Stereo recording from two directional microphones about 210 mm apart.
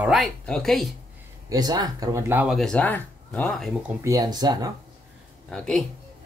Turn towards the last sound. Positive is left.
turn(degrees=0)  # may be behind; listen again after turning